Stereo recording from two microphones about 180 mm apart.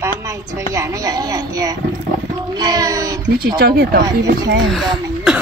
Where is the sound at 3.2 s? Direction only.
60° right (ahead or behind).